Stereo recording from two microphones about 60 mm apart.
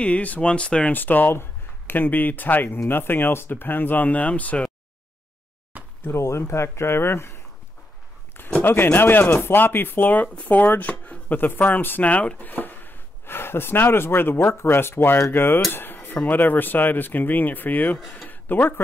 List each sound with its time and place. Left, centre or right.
0.0 s speech: left
0.9 s speech: left
6.0 s speech: left
8.6 s speech: left
15.7 s a sound: left
16.3 s speech: left